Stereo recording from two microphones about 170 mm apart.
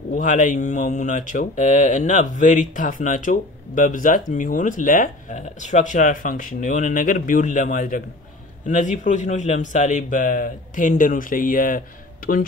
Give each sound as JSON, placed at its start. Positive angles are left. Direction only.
{"t": 0.1, "sound": "speech", "side_deg": 50}